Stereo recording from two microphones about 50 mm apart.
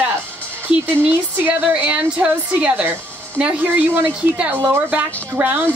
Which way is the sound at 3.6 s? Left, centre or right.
Right.